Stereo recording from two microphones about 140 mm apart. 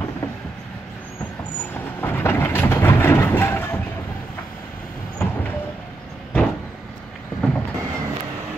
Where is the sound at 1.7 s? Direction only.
15° left (ahead or behind).